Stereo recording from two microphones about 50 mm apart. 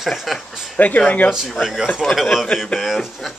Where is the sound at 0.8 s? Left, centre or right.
Left.